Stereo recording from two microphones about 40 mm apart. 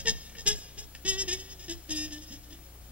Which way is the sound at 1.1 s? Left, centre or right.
Right.